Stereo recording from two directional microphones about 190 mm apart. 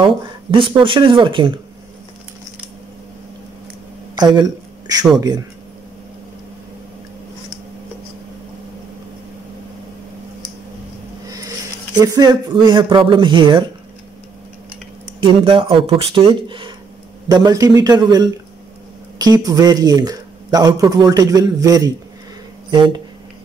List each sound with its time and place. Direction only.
0.0 s speech: 25° right (ahead or behind)
4.2 s speech: 20° right (ahead or behind)
11.2 s speech: 20° right (ahead or behind)
15.2 s speech: 25° right (ahead or behind)